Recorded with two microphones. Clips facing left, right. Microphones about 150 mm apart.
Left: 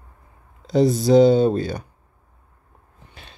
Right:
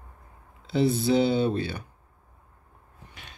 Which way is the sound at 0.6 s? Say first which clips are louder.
Left 6 dB; 40° left (ahead or behind).